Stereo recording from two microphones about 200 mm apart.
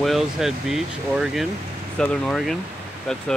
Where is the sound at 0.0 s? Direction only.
Centre (ahead or behind).